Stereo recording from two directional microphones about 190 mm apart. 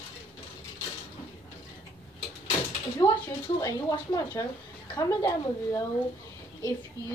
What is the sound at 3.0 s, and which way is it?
A woman's voice, 25° left (ahead or behind).